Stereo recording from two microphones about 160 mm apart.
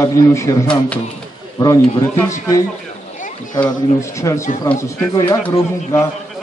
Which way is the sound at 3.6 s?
20° left (ahead or behind).